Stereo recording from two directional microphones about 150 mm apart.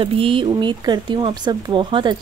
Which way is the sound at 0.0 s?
35° right (ahead or behind).